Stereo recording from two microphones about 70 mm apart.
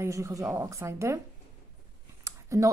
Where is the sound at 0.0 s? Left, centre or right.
Right.